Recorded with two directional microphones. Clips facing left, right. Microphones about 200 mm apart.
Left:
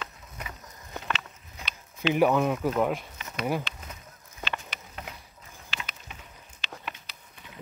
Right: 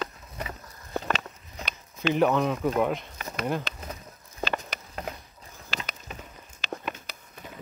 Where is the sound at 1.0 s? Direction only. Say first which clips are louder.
Right 5 dB; 40° right (ahead or behind).